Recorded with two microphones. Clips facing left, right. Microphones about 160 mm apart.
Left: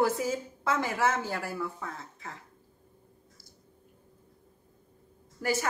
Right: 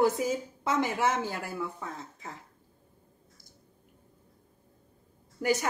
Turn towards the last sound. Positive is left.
turn(degrees=-20)  # may be behind; listen again after turning